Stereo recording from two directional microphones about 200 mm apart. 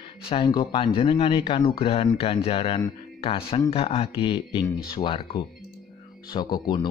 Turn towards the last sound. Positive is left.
turn(degrees=20)  # may be behind; listen again after turning